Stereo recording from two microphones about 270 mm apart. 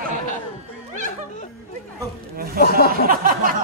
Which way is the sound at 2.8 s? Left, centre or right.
Right.